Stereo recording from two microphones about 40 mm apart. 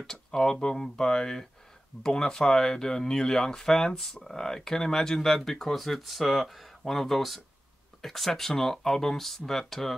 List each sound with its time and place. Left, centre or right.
0.0 s speech: centre